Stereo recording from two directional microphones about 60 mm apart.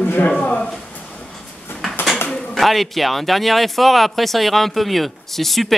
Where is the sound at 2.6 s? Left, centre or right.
Centre.